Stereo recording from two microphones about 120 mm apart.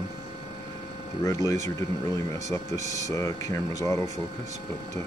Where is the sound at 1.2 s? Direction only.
25° left (ahead or behind).